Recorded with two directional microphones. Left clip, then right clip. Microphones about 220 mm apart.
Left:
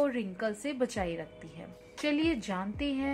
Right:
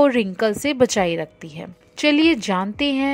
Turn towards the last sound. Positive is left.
turn(degrees=-45)  # may be behind; listen again after turning